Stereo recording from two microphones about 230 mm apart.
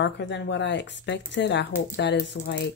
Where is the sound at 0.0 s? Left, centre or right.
Left.